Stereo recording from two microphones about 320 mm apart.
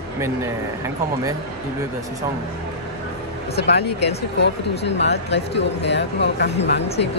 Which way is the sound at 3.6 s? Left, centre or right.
Left.